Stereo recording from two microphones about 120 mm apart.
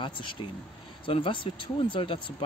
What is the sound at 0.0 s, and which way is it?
Speech, 45° left (ahead or behind).